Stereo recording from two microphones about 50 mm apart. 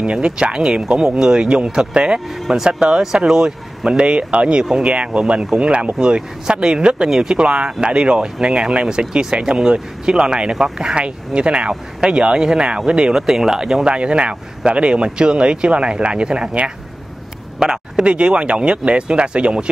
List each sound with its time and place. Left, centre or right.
0.0 s speech: right